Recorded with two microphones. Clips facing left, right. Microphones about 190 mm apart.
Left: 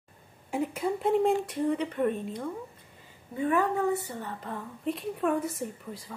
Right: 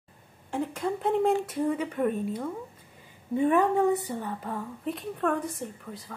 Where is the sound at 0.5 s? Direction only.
10° left (ahead or behind).